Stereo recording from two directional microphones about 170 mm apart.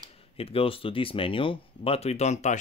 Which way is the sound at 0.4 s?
35° left (ahead or behind).